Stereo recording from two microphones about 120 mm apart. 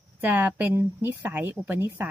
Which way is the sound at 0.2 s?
15° right (ahead or behind).